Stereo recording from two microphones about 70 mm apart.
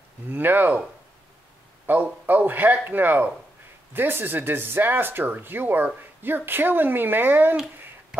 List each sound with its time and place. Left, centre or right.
0.3 s speech: right
1.9 s speech: right
8.1 s a sound: centre